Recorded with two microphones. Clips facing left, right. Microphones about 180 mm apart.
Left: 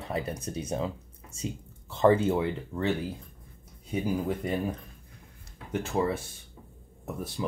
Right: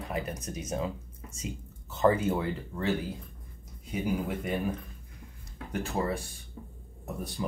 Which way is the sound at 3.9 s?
30° left (ahead or behind).